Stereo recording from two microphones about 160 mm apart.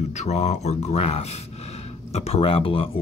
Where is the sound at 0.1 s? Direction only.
45° left (ahead or behind).